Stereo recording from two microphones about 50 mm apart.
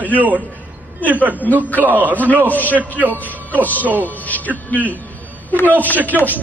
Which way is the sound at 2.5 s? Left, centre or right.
Left.